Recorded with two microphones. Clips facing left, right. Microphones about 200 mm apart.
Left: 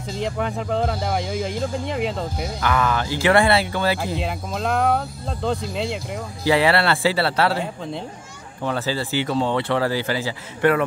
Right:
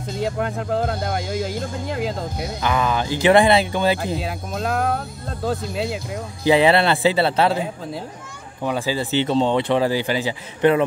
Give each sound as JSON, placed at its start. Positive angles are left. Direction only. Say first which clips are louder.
{"t": 0.2, "sound": "speech", "louder": "right 1 dB", "side_deg": 0}
{"t": 2.6, "sound": "speech", "louder": "right 1 dB", "side_deg": -20}
{"t": 4.0, "sound": "speech", "louder": "even", "side_deg": 0}
{"t": 6.4, "sound": "speech", "louder": "right 3 dB", "side_deg": -20}
{"t": 8.6, "sound": "speech", "louder": "right 1 dB", "side_deg": -15}